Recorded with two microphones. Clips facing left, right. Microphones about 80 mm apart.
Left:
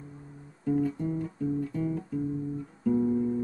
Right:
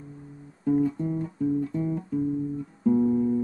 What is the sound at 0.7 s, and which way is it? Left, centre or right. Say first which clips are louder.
Music: right 4 dB; centre.